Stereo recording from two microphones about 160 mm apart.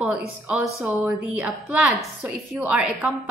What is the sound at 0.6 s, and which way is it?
Speech, 20° right (ahead or behind).